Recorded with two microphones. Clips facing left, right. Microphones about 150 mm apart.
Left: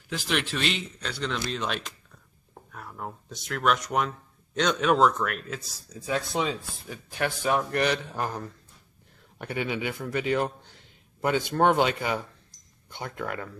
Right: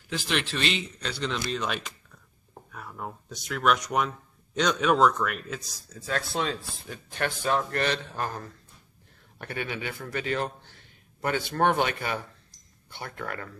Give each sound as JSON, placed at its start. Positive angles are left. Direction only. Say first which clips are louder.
{"t": 0.1, "sound": "speech", "louder": "left 1 dB", "side_deg": 5}
{"t": 5.9, "sound": "speech", "louder": "left 2 dB", "side_deg": 15}